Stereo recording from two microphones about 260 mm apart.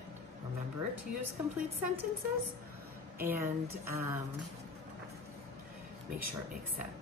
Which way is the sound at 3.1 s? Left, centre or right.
Centre.